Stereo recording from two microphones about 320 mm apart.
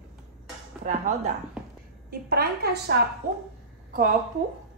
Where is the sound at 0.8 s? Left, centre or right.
Right.